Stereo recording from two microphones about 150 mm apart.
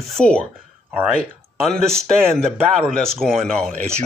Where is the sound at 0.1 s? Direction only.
5° left (ahead or behind).